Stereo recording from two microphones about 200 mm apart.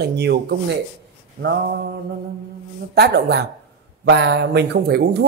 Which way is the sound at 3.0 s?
55° right (ahead or behind).